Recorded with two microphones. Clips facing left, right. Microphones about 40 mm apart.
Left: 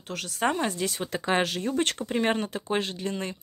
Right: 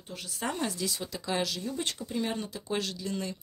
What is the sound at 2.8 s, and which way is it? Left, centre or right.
Speech, left.